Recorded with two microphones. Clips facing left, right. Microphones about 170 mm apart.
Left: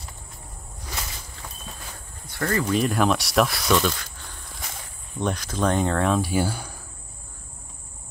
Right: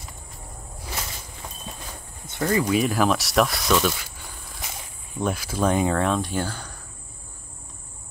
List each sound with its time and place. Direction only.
1.7 s a sound: 20° right (ahead or behind)
2.2 s speech: 15° right (ahead or behind)
2.8 s speech: centre (ahead or behind)